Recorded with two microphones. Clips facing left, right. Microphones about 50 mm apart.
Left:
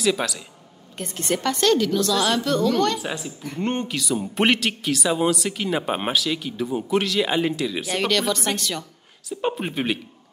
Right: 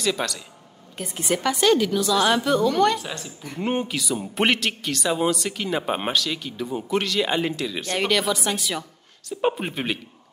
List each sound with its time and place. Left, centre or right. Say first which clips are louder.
0.0 s a woman's voice: left 2 dB; centre
3.0 s speech: left 4 dB; centre
3.4 s speech: right 1 dB; centre
8.0 s a woman's voice: even; centre